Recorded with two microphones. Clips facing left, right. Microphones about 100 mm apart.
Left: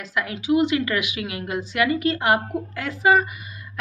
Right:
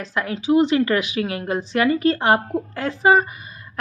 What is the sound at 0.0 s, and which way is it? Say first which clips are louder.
Speech: right 3 dB; 30° right (ahead or behind).